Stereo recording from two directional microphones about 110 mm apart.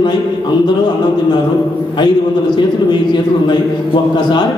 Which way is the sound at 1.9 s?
45° left (ahead or behind).